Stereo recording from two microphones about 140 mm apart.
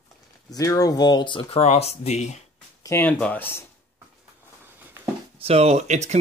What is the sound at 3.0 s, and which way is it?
Speech, 10° left (ahead or behind).